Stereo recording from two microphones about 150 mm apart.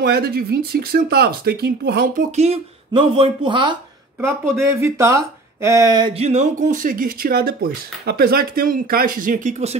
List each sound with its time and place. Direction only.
0.0 s speech: 90° right
2.3 s speech: 45° right (ahead or behind)
4.6 s speech: 20° right (ahead or behind)
6.1 s speech: 45° right (ahead or behind)